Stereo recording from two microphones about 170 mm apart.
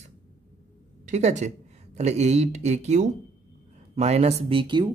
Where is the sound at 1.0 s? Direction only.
45° right (ahead or behind).